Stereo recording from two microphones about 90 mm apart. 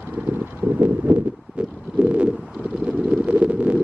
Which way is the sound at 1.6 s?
15° right (ahead or behind).